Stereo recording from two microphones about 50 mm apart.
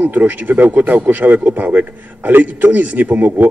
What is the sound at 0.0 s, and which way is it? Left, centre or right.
Speech, right.